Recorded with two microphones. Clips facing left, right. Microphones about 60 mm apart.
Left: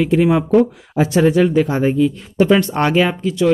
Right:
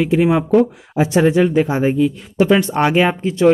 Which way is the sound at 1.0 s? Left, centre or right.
Right.